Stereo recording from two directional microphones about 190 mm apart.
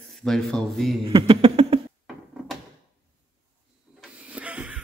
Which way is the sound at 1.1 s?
30° right (ahead or behind).